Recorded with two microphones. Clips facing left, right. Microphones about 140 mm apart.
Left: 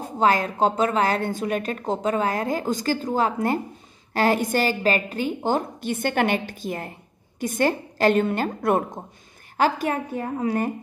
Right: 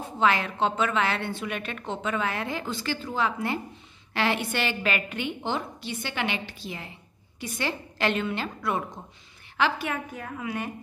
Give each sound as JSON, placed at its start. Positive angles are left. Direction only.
{"t": 0.0, "sound": "a woman's voice", "side_deg": 40}